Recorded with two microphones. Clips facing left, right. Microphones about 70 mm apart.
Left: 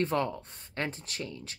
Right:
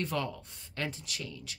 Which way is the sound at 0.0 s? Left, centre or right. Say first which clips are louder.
Left 5 dB; left.